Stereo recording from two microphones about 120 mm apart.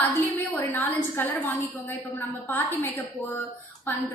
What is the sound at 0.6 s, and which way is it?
A woman's voice, 15° left (ahead or behind).